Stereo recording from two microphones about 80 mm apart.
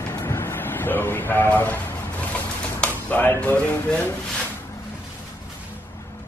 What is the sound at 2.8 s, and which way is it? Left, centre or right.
Speech, left.